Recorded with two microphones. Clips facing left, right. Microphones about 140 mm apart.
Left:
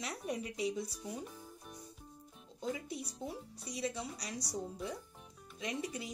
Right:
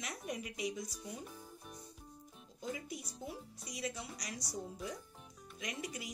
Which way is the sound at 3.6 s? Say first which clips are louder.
Left 4 dB; 30° left (ahead or behind).